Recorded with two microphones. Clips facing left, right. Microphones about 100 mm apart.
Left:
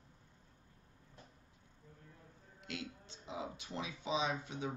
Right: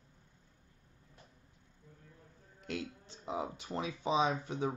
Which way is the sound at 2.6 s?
40° right (ahead or behind).